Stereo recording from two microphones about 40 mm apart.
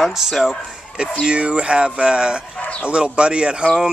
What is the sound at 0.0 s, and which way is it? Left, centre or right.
Speech, centre.